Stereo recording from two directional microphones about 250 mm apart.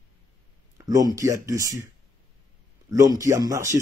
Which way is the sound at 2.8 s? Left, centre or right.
Centre.